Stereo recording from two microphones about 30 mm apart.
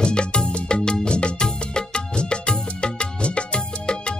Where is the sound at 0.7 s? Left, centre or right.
Left.